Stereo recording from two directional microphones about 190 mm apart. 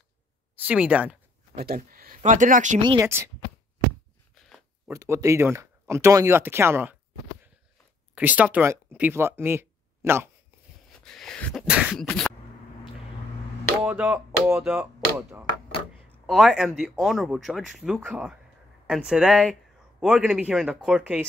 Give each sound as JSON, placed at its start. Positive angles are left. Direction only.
{"t": 0.6, "sound": "speech", "side_deg": -5}
{"t": 1.5, "sound": "speech", "side_deg": -55}
{"t": 2.8, "sound": "speech", "side_deg": -25}
{"t": 4.8, "sound": "speech", "side_deg": -15}
{"t": 8.1, "sound": "speech", "side_deg": -10}
{"t": 11.1, "sound": "a sound", "side_deg": 5}
{"t": 11.6, "sound": "beatboxing", "side_deg": -5}
{"t": 13.8, "sound": "speech", "side_deg": -5}